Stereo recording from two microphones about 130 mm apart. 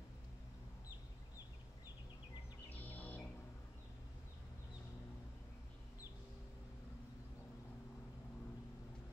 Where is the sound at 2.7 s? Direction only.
15° left (ahead or behind).